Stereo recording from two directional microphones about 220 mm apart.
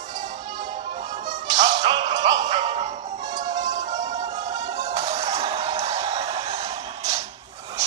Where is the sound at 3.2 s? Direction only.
20° right (ahead or behind).